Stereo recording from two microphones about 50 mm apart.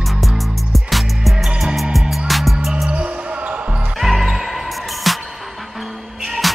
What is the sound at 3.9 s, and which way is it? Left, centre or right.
Music, centre.